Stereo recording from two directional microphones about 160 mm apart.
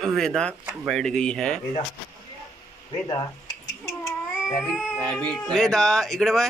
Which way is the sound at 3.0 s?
25° left (ahead or behind).